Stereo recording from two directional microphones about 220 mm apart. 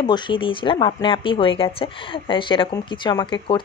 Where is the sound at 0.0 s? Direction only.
20° left (ahead or behind).